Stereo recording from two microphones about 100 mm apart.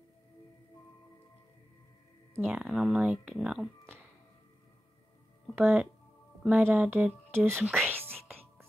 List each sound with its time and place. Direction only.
2.4 s speech: 10° right (ahead or behind)
5.6 s speech: 10° right (ahead or behind)
7.6 s whispering: 20° right (ahead or behind)